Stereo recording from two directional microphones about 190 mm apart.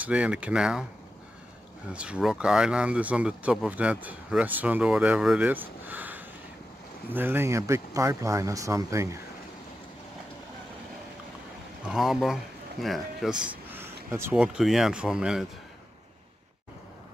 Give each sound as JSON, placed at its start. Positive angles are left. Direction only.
{"t": 0.0, "sound": "speech", "side_deg": -5}
{"t": 2.0, "sound": "speech", "side_deg": -5}
{"t": 11.8, "sound": "speech", "side_deg": -5}